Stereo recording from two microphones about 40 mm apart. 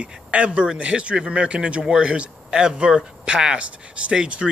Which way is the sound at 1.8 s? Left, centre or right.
Centre.